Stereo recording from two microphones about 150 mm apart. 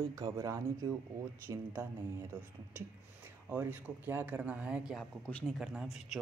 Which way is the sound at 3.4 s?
10° right (ahead or behind).